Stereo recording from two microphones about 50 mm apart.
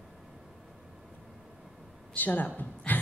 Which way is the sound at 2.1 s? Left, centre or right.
Left.